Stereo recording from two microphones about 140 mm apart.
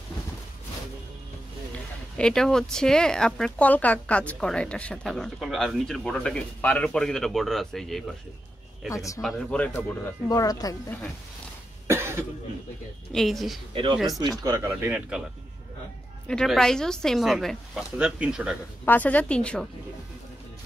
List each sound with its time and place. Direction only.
2.1 s speech: 5° left (ahead or behind)
8.9 s speech: 25° left (ahead or behind)
9.2 s a woman's voice: 5° left (ahead or behind)
10.2 s speech: 25° left (ahead or behind)
11.9 s cough: 20° right (ahead or behind)
13.1 s speech: centre (ahead or behind)
14.4 s speech: 20° right (ahead or behind)
16.3 s speech: 5° left (ahead or behind)
18.9 s a woman's voice: 10° left (ahead or behind)